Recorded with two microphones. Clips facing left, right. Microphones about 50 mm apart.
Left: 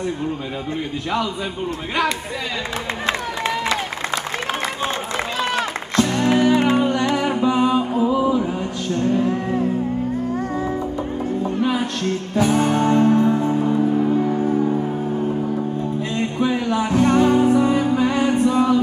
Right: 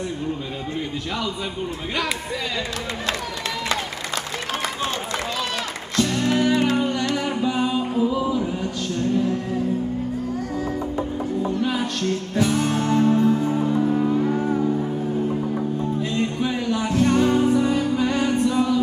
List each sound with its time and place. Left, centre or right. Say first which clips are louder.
5.1 s music: left 4 dB; left
9.0 s music: left 2 dB; left
11.6 s music: left 2 dB; left
13.1 s music: left 2 dB; left
16.2 s music: left 6 dB; centre; by 18.8 s left